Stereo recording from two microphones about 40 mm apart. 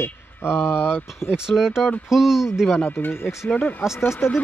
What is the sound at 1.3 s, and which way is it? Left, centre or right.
Speech, centre.